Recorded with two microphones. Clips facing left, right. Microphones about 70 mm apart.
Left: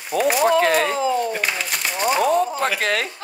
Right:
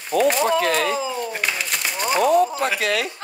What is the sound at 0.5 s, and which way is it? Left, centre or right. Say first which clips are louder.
Speech: left 3 dB; left.